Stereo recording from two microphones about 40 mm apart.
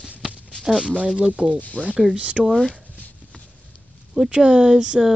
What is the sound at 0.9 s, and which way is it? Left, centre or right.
Speech, right.